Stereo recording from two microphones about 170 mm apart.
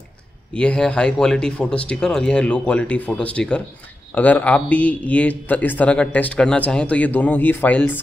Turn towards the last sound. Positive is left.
turn(degrees=10)  # may be behind; listen again after turning